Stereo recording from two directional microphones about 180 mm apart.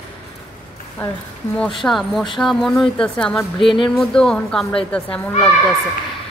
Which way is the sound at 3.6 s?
30° left (ahead or behind).